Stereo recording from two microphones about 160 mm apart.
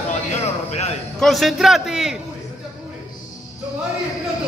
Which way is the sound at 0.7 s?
45° left (ahead or behind).